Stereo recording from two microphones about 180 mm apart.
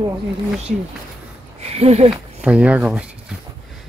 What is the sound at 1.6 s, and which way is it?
Speech, 35° right (ahead or behind).